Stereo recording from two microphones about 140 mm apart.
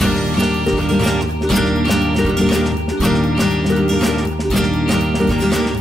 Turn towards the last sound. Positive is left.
turn(degrees=0)  # may be behind; listen again after turning